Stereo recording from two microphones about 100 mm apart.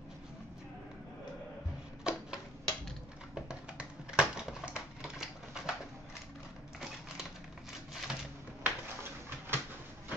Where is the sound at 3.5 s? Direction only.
10° right (ahead or behind).